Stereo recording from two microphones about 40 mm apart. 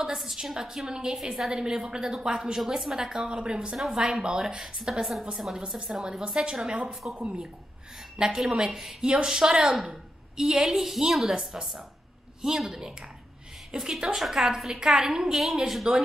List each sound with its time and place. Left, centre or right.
0.0 s a woman's voice: centre
0.8 s a woman's voice: right
6.9 s speech: centre
8.2 s a woman's voice: centre